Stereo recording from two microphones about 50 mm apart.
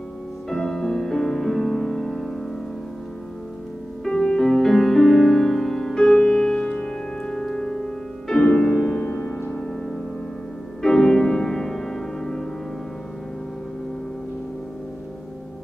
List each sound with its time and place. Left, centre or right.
0.5 s music: centre
4.0 s music: centre
6.6 s music: centre
9.0 s music: left
10.8 s music: centre